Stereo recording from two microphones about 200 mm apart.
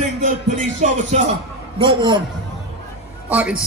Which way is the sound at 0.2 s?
40° right (ahead or behind).